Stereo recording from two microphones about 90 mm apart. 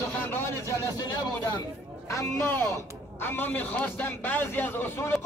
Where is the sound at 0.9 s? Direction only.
50° left (ahead or behind).